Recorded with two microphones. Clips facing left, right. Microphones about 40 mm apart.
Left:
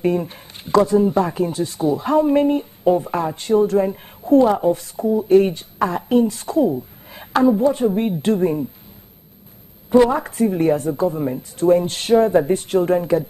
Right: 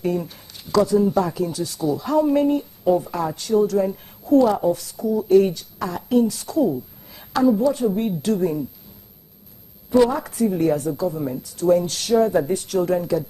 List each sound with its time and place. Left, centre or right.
0.0 s speech: left
9.8 s speech: left